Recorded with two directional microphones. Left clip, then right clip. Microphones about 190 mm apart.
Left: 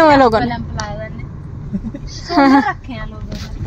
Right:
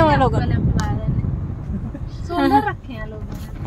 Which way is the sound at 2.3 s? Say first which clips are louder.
Left 5 dB; 25° left (ahead or behind).